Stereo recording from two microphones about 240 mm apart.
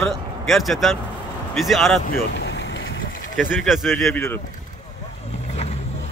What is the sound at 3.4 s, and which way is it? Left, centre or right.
Speech, centre.